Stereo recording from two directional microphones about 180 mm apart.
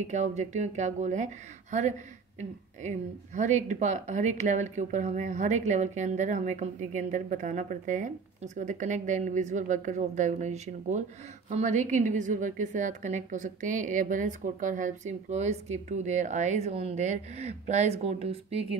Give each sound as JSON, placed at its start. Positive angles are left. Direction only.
{"t": 0.0, "sound": "a woman's voice", "side_deg": -40}